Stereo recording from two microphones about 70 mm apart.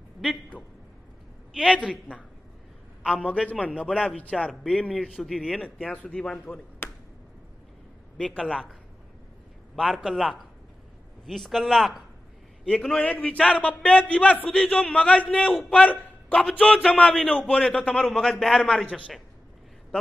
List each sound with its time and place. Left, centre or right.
0.2 s a man's voice: centre
1.9 s a man's voice: centre
3.4 s a man's voice: centre
5.0 s a man's voice: centre
5.6 s a man's voice: centre
6.8 s a sound: left
8.2 s a man's voice: centre
9.8 s a man's voice: centre
12.6 s a man's voice: centre
18.0 s a man's voice: centre